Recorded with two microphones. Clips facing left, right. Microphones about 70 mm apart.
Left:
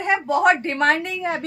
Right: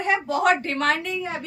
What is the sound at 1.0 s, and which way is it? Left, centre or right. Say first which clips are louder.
Speech: left 3 dB; left.